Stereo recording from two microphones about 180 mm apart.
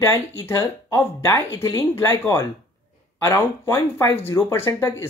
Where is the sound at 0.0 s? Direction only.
15° left (ahead or behind).